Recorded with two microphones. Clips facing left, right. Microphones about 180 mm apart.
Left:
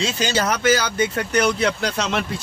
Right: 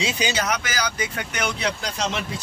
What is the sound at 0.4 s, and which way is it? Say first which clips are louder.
Speech: left 6 dB; 30° left (ahead or behind).